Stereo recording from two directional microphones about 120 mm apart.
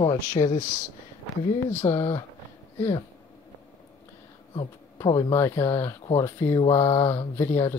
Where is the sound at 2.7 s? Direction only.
55° left (ahead or behind).